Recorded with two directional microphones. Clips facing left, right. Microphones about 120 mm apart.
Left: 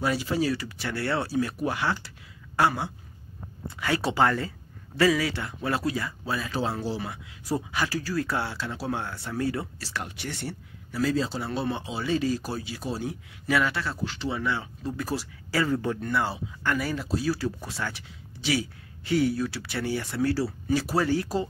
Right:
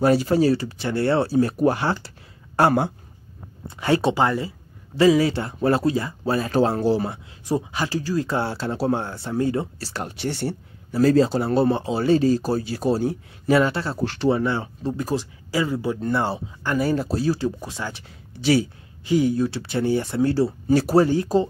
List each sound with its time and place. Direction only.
0.0 s speech: 45° right (ahead or behind)
3.6 s speech: 25° right (ahead or behind)
6.3 s speech: 50° right (ahead or behind)
7.0 s speech: 35° right (ahead or behind)
11.1 s speech: 50° right (ahead or behind); by 14.0 s 30° right (ahead or behind)
14.0 s speech: 50° right (ahead or behind)
14.4 s speech: 35° right (ahead or behind); by 16.0 s 10° right (ahead or behind)
16.0 s speech: 30° right (ahead or behind)
16.9 s speech: 40° right (ahead or behind)
17.3 s speech: 20° right (ahead or behind)
19.0 s speech: 20° right (ahead or behind)
20.7 s speech: 45° right (ahead or behind)
21.0 s speech: 25° right (ahead or behind)